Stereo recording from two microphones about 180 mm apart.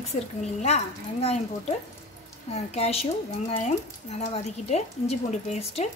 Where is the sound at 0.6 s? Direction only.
35° left (ahead or behind).